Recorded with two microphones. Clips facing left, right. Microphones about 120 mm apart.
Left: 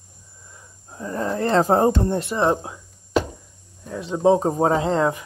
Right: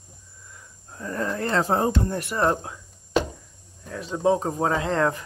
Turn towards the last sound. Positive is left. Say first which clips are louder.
# left 3 dB
turn(degrees=20)  # may be behind; listen again after turning